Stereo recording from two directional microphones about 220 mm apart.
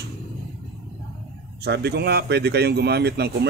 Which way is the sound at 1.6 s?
50° right (ahead or behind).